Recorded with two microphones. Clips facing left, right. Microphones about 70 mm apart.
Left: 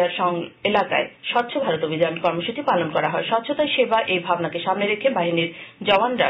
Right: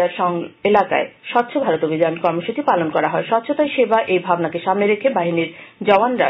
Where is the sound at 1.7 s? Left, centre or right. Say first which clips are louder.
Right 4 dB; right.